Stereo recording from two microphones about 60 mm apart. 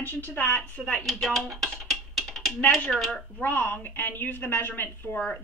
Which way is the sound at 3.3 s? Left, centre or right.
Left.